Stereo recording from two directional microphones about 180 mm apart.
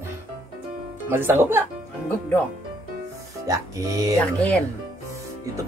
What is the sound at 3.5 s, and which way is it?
Speech, 20° right (ahead or behind).